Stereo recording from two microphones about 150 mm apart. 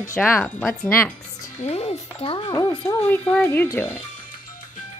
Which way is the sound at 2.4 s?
25° left (ahead or behind).